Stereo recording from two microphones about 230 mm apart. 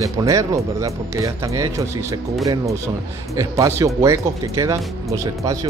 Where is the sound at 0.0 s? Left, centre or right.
Centre.